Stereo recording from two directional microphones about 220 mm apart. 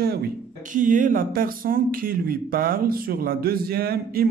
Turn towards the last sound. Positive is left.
turn(degrees=-45)  # may be behind; listen again after turning